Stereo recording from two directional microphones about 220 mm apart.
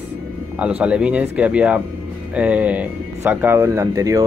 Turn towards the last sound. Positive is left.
turn(degrees=-15)  # may be behind; listen again after turning